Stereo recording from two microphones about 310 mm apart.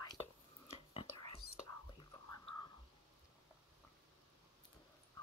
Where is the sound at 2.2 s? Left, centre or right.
Left.